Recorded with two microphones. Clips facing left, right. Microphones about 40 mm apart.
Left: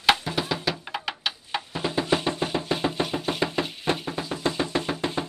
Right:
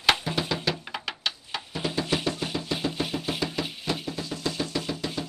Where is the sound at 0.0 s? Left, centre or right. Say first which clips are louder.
Left 2 dB; centre.